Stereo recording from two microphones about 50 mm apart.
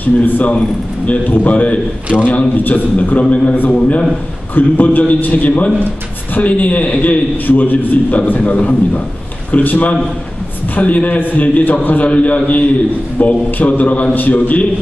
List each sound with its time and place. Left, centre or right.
0.0 s a man's voice: left